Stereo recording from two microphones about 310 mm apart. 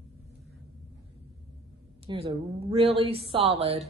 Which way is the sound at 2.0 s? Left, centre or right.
Centre.